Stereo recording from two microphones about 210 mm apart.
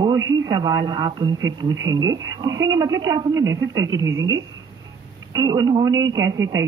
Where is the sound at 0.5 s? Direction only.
20° right (ahead or behind).